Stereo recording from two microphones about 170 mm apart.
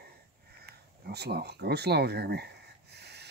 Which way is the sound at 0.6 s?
70° right (ahead or behind).